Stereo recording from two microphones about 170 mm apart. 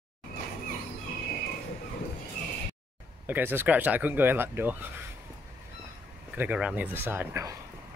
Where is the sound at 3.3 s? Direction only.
10° right (ahead or behind).